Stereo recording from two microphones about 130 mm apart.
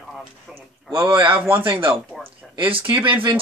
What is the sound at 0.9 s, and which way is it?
Speech, 40° right (ahead or behind).